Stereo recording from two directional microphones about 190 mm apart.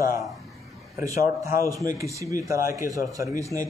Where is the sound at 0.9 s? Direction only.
15° right (ahead or behind).